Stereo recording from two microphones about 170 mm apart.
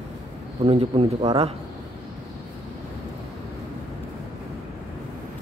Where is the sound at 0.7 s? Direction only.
35° right (ahead or behind).